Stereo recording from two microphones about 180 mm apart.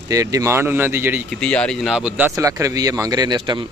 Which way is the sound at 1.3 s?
5° left (ahead or behind).